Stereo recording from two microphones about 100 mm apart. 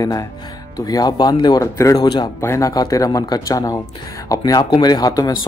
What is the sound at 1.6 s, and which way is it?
Speech, 30° left (ahead or behind).